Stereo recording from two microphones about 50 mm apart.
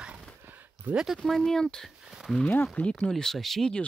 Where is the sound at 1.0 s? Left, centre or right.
Centre.